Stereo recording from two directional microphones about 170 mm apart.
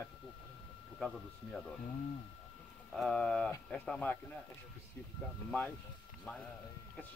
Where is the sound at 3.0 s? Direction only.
5° left (ahead or behind).